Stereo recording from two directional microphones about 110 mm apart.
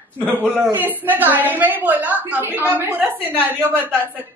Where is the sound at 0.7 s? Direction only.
15° right (ahead or behind).